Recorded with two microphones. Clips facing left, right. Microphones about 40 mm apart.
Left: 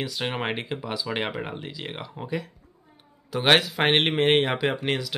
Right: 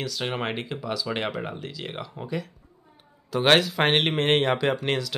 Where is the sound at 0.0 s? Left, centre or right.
Centre.